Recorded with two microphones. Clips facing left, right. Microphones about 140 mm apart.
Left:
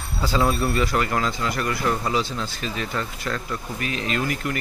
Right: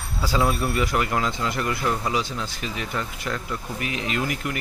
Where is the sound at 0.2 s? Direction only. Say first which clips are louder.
Left 1 dB; 10° right (ahead or behind).